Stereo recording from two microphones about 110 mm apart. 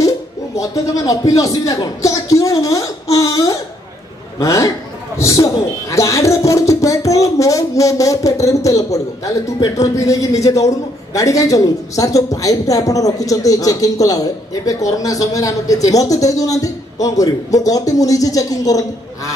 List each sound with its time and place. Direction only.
0.6 s a man's voice: 30° left (ahead or behind)